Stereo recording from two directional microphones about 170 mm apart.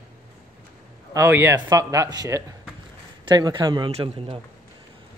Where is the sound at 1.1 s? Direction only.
15° right (ahead or behind); by 4.4 s 30° right (ahead or behind).